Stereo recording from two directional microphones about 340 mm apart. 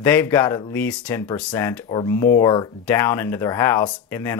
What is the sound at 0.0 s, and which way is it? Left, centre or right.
Speech, centre.